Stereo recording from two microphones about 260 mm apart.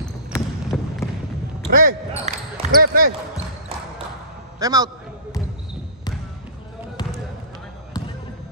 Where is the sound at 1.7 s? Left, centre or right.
Right.